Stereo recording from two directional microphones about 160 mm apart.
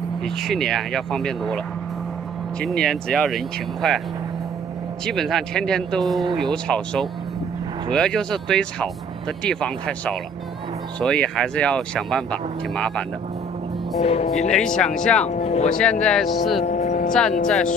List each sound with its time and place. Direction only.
0.2 s speech: 5° left (ahead or behind)
2.6 s speech: 5° left (ahead or behind)
5.0 s speech: centre (ahead or behind)
14.0 s speech: 40° left (ahead or behind)
14.5 s speech: 5° left (ahead or behind)
15.2 s music: 45° left (ahead or behind)
15.7 s speech: 5° left (ahead or behind)
16.6 s vehicle: 45° left (ahead or behind)